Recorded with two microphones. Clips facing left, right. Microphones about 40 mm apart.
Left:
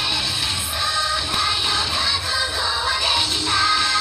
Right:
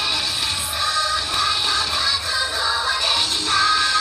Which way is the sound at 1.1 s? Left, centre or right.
Centre.